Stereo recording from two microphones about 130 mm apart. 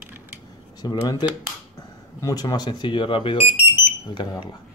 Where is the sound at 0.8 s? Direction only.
30° left (ahead or behind).